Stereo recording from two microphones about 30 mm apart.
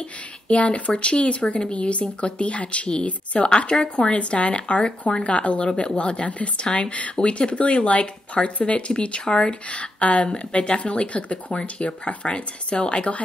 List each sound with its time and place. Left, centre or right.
0.5 s speech: left
5.6 s speech: left
9.7 s speech: left